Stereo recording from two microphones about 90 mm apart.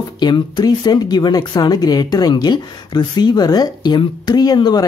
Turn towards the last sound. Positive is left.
turn(degrees=50)  # may be behind; listen again after turning